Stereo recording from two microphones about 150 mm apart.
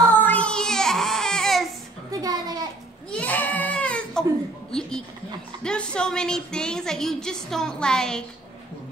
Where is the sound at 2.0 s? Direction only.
25° right (ahead or behind).